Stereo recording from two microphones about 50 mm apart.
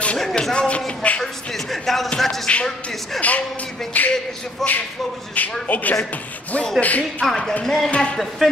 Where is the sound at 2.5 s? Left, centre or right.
Left.